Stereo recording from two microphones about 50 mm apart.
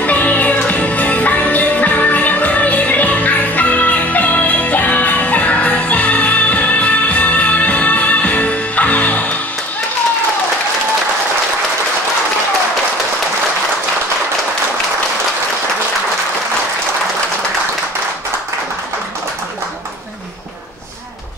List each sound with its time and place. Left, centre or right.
0.0 s music: left